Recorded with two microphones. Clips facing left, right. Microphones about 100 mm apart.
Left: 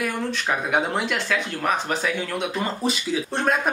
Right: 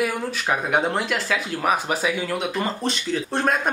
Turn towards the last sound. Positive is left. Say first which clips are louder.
# even
turn(degrees=0)  # may be behind; listen again after turning